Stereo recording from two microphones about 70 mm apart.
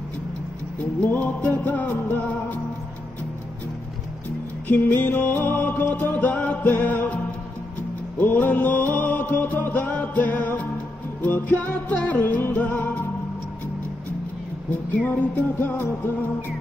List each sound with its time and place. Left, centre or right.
1.0 s music: left
4.6 s music: left
8.2 s music: left
14.7 s music: left